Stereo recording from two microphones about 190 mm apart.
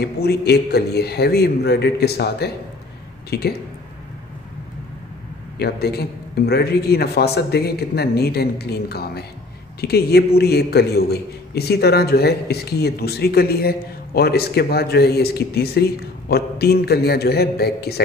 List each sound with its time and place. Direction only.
0.0 s a man's voice: 60° left (ahead or behind)
5.6 s a man's voice: 55° left (ahead or behind)